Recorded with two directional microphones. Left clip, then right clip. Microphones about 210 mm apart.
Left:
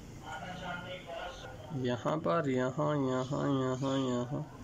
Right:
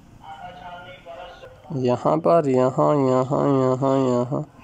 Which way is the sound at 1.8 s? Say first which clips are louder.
Right 14 dB; 30° right (ahead or behind).